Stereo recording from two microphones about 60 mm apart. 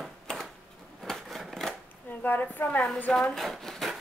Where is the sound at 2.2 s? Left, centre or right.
Left.